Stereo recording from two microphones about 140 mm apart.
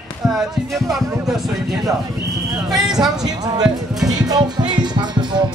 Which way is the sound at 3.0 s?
30° right (ahead or behind).